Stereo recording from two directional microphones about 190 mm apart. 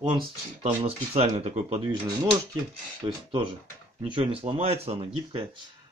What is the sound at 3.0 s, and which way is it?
Mantra, 25° right (ahead or behind).